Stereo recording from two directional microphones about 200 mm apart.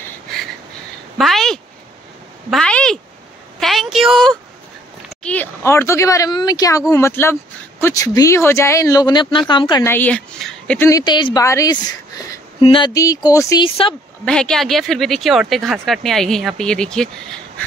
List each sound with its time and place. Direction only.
0.0 s a sound: centre (ahead or behind)
5.2 s a woman's voice: 10° left (ahead or behind)
9.8 s speech: 10° left (ahead or behind)
10.9 s a woman's voice: 20° left (ahead or behind)
14.2 s speech: 5° left (ahead or behind)